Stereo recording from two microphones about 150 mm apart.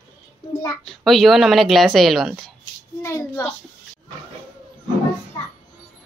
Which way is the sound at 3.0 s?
20° left (ahead or behind).